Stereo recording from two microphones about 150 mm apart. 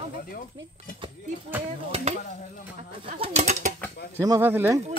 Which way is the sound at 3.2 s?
50° right (ahead or behind).